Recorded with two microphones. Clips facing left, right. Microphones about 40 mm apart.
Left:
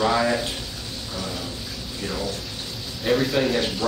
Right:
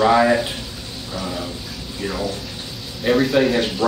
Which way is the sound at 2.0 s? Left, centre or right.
Centre.